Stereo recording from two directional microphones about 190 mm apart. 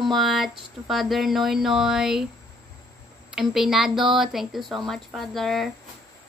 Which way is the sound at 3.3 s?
Centre (ahead or behind).